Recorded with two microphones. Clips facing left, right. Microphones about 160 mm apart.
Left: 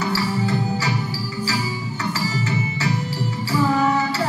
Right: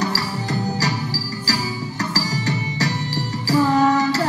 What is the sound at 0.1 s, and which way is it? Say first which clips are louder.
Music: left 3 dB; 40° right (ahead or behind).